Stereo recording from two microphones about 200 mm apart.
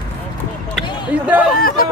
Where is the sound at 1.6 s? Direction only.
45° left (ahead or behind).